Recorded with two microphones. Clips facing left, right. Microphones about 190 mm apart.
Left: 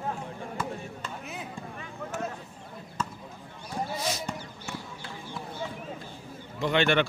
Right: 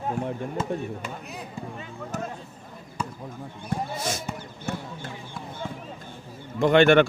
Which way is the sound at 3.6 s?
50° right (ahead or behind).